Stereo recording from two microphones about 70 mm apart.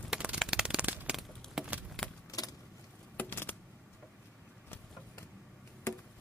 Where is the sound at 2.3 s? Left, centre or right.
Left.